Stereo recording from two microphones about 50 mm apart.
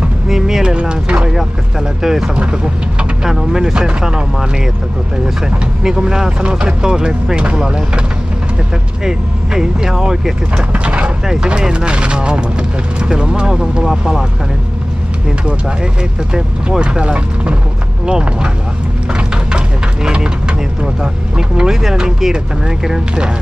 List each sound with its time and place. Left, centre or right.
0.3 s speech: centre
2.3 s speech: right
5.9 s speech: centre
9.0 s speech: centre
10.5 s speech: right
11.2 s speech: centre
15.4 s speech: centre
19.1 s speech: centre